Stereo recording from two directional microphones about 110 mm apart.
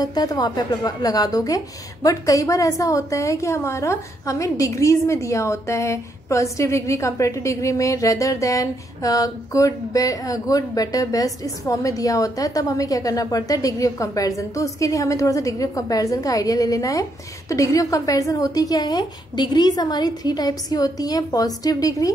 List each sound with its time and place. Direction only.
0.0 s a woman's voice: 35° left (ahead or behind)